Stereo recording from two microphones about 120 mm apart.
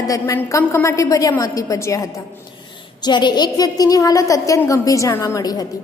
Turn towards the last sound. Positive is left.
turn(degrees=30)  # may be behind; listen again after turning